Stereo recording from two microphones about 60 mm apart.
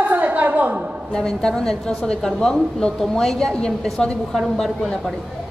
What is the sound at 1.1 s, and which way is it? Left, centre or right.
Speech, centre.